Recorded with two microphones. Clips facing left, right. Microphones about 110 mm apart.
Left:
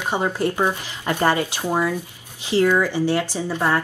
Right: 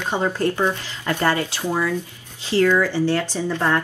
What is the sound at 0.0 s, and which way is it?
Speech, 15° left (ahead or behind).